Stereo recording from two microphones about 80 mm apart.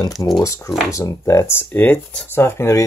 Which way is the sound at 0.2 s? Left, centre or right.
Left.